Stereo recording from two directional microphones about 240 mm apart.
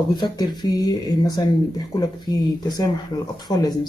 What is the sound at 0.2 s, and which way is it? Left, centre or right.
Speech, centre.